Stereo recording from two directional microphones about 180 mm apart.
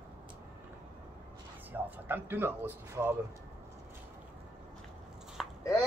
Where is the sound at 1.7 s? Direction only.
10° right (ahead or behind).